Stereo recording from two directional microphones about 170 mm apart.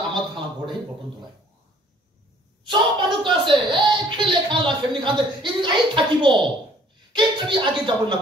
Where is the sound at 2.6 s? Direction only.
30° right (ahead or behind).